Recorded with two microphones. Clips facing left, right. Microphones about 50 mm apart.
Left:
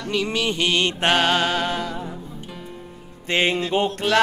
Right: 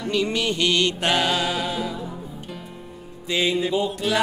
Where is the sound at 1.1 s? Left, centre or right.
Left.